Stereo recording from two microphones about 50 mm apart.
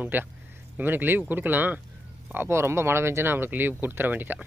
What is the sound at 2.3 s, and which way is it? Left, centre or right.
Speech, right.